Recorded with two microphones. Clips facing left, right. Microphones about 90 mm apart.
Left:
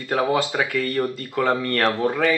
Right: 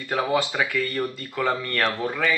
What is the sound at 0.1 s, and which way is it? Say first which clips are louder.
Speech: left 3 dB; 50° left (ahead or behind).